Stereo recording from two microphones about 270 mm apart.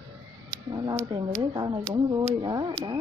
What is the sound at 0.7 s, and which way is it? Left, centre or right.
Speech, centre.